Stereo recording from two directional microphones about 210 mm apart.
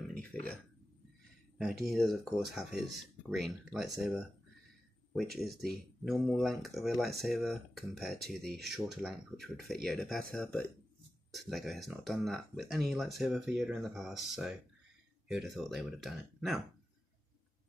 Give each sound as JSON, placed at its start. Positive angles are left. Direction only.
{"t": 0.1, "sound": "a sound", "side_deg": 5}
{"t": 1.6, "sound": "speech", "side_deg": 0}
{"t": 5.3, "sound": "speech", "side_deg": 0}